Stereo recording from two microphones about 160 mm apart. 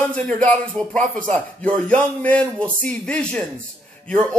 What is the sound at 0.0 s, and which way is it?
Speech, 10° left (ahead or behind).